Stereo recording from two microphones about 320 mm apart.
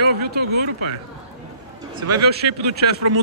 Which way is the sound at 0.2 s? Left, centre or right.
Right.